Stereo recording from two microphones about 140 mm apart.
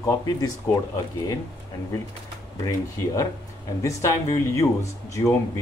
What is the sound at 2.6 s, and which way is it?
Speech, 25° left (ahead or behind).